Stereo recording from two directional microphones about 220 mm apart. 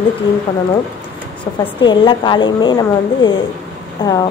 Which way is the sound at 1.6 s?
20° left (ahead or behind).